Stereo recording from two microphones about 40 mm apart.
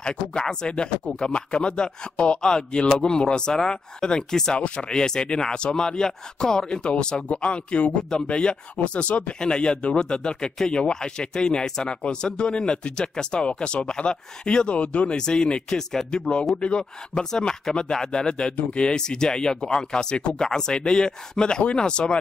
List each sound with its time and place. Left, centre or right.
0.0 s speech: left
4.6 s speech: left
15.1 s speech: left